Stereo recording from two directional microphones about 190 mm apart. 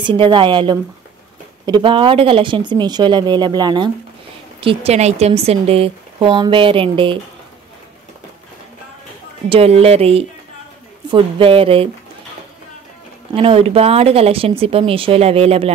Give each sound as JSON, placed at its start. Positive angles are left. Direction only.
{"t": 0.0, "sound": "a woman's voice", "side_deg": -25}
{"t": 9.5, "sound": "a woman's voice", "side_deg": -30}
{"t": 13.3, "sound": "speech", "side_deg": -30}